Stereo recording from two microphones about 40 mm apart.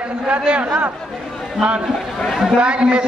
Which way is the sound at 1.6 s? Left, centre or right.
Centre.